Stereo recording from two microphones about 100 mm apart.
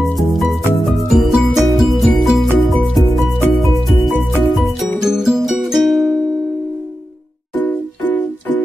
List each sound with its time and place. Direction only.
0.0 s music: centre (ahead or behind)
7.6 s music: 15° left (ahead or behind)